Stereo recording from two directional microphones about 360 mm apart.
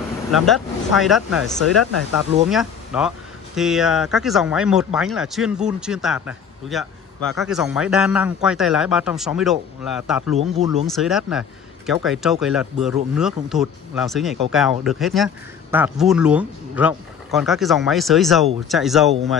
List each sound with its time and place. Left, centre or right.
0.3 s speech: centre
10.3 s speech: centre
10.9 s speech: centre